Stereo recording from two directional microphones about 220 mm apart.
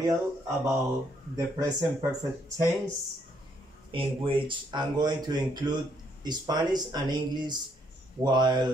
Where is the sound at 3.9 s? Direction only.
25° right (ahead or behind).